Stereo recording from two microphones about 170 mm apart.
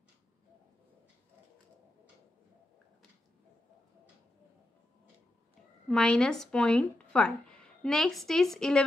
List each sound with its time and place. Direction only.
5.9 s speech: 5° left (ahead or behind)